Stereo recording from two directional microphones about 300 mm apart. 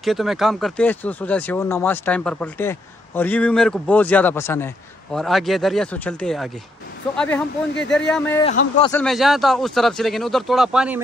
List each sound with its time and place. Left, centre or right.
0.0 s speech: centre
8.5 s a man's voice: left
8.9 s speech: centre